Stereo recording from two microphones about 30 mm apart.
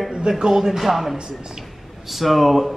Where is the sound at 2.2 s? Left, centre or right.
Centre.